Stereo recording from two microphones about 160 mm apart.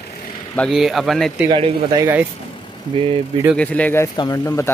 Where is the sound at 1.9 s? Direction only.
15° right (ahead or behind).